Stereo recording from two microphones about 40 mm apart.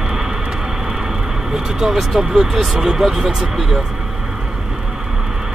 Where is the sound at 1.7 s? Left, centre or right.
Centre.